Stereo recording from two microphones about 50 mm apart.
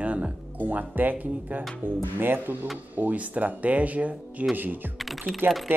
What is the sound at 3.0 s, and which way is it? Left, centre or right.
Speech, right.